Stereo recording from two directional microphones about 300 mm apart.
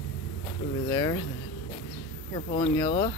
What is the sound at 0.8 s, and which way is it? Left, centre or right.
Speech, centre.